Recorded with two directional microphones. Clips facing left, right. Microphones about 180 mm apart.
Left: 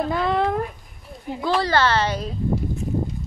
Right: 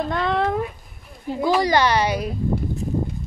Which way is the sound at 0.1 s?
Centre (ahead or behind).